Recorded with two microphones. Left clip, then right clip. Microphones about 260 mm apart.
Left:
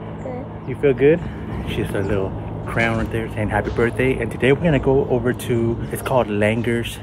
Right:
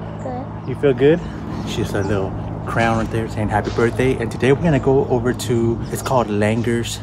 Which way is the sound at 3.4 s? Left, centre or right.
Centre.